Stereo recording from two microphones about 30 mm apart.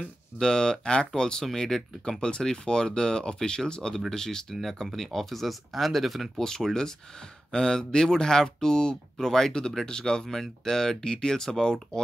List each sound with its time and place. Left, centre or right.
0.4 s speech: left
1.4 s speech: centre
4.9 s speech: centre
6.6 s speech: right
7.5 s speech: left
10.2 s speech: centre